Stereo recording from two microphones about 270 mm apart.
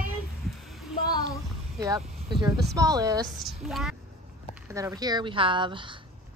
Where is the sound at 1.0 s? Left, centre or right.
Centre.